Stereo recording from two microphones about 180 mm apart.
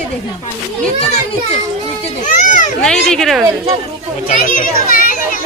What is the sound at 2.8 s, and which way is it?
Speech, 5° left (ahead or behind).